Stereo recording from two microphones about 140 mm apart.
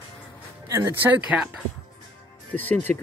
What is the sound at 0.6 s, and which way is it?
Speech, 20° right (ahead or behind).